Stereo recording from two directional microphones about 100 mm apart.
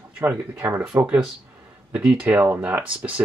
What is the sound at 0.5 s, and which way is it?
Speech, 20° right (ahead or behind).